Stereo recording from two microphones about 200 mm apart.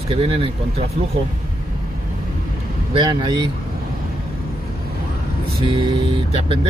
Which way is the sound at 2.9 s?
20° right (ahead or behind).